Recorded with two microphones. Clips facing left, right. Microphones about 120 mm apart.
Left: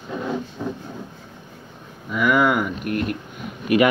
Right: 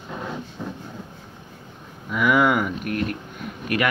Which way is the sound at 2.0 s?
Centre (ahead or behind).